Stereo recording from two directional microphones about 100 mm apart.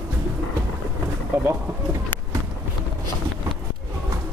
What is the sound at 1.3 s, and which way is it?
Speech, 20° right (ahead or behind).